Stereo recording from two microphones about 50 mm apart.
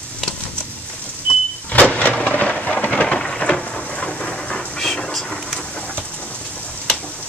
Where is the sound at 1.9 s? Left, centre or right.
Left.